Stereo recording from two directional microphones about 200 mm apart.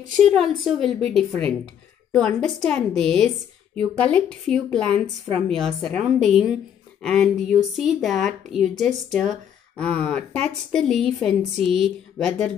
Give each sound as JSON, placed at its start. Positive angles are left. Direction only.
{"t": 0.2, "sound": "speech", "side_deg": 0}